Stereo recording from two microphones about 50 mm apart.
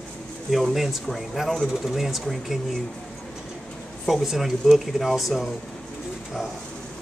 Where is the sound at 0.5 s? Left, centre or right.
Centre.